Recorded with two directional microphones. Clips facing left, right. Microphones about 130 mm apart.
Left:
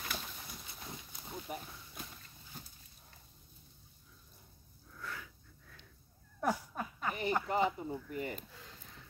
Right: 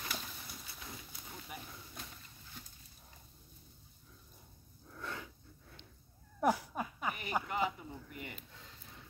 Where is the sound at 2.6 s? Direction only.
40° left (ahead or behind).